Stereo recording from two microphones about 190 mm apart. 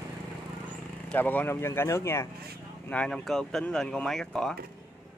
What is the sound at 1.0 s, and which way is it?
Speech, 10° left (ahead or behind).